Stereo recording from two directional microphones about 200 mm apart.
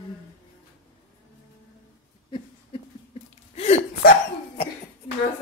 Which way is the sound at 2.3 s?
30° left (ahead or behind).